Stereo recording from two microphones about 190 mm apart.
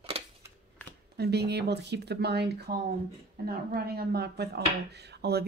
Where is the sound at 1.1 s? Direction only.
60° right (ahead or behind).